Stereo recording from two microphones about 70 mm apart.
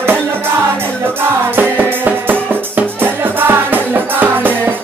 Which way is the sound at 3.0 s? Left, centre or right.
Right.